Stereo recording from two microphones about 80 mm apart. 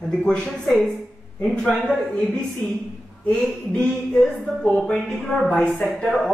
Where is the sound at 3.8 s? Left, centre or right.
Centre.